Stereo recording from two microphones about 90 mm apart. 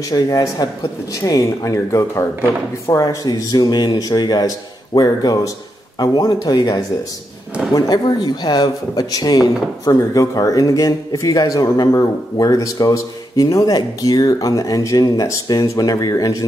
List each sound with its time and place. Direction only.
0.1 s speech: 45° left (ahead or behind)